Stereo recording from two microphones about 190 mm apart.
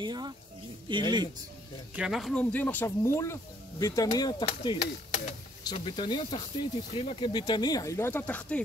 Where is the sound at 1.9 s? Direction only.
5° right (ahead or behind).